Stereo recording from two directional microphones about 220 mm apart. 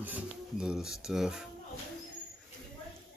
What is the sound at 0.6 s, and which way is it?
Speech, 5° right (ahead or behind).